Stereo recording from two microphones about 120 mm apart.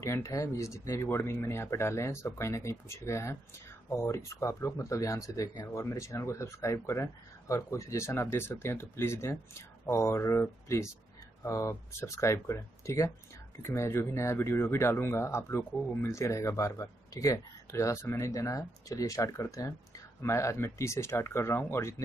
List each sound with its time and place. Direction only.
0.0 s speech: 25° left (ahead or behind)